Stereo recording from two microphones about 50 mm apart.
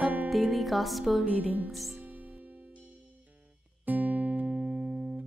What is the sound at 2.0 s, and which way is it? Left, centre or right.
Music, right.